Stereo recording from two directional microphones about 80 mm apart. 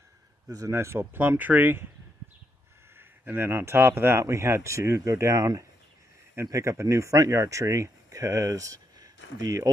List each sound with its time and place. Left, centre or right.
0.5 s speech: right
3.0 s speech: right
5.4 s speech: right
6.4 s speech: right